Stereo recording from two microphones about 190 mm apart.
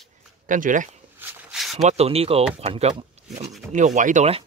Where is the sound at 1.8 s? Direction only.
35° right (ahead or behind).